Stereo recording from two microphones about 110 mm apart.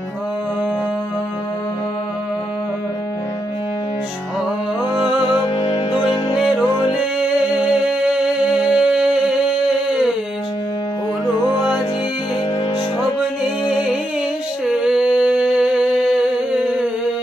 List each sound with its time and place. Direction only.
5.6 s music: 40° left (ahead or behind)
6.3 s music: 5° right (ahead or behind)
13.4 s music: 5° right (ahead or behind)
14.7 s a sound: 5° right (ahead or behind)